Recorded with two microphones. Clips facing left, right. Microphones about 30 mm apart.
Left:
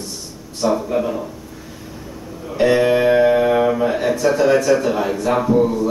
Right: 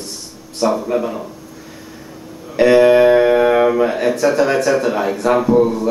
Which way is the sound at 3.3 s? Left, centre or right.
Right.